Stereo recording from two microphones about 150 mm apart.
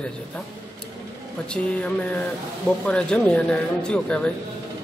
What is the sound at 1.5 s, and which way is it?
A man's voice, 10° left (ahead or behind).